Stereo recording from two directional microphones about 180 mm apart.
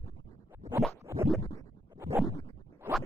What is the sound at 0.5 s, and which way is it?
Scratch, 15° right (ahead or behind).